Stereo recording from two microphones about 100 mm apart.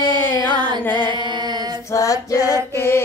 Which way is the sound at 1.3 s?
45° right (ahead or behind).